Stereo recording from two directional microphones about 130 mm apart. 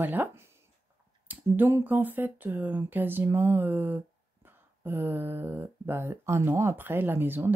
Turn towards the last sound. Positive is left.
turn(degrees=-15)  # may be behind; listen again after turning